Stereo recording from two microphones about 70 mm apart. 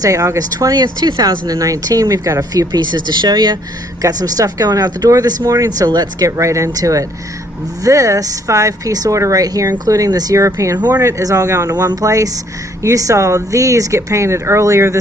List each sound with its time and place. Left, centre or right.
0.0 s speech: right
1.6 s speech: right
2.7 s speech: right
4.0 s speech: right
5.4 s speech: right
5.9 s speech: right
6.2 s speech: right
10.4 s speech: right
11.7 s speech: right